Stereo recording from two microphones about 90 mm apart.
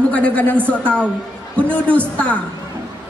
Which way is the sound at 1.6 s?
15° left (ahead or behind).